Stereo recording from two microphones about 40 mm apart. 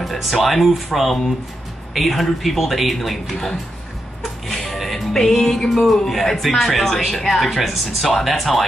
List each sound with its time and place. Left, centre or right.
0.0 s speech: centre
4.2 s music: centre
6.0 s speech: centre